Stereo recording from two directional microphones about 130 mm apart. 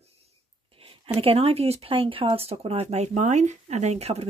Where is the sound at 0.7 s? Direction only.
45° right (ahead or behind).